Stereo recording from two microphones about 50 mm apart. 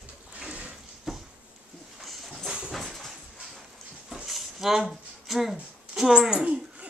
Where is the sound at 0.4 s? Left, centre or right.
Right.